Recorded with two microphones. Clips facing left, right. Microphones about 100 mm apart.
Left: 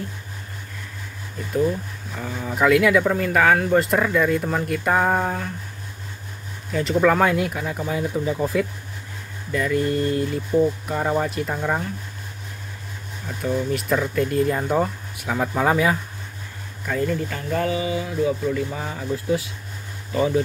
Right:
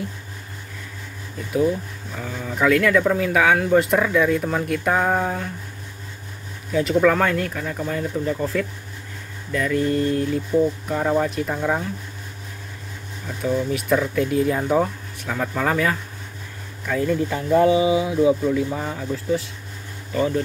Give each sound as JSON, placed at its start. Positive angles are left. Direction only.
{"t": 1.5, "sound": "speech", "side_deg": -5}
{"t": 6.7, "sound": "speech", "side_deg": 0}
{"t": 13.4, "sound": "speech", "side_deg": 0}
{"t": 15.2, "sound": "speech", "side_deg": 10}
{"t": 16.8, "sound": "speech", "side_deg": 0}
{"t": 17.3, "sound": "speech", "side_deg": -15}
{"t": 18.5, "sound": "speech", "side_deg": -5}